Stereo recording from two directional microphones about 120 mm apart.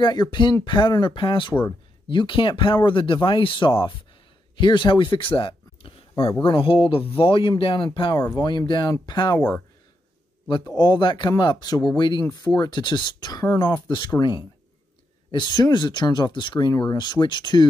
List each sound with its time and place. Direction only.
0.0 s speech: 35° left (ahead or behind)
10.7 s speech: 35° left (ahead or behind)
15.3 s speech: 35° left (ahead or behind)